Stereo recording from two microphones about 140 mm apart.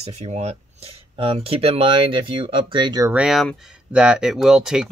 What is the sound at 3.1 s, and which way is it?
Speech, 5° right (ahead or behind).